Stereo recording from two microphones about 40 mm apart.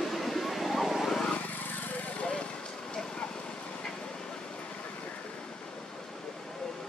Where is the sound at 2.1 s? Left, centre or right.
Left.